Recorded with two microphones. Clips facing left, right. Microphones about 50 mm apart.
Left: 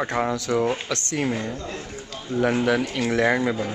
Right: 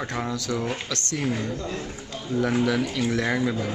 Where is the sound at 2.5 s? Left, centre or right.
Left.